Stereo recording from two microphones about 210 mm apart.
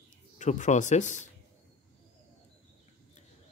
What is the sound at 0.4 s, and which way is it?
Speech, 35° left (ahead or behind).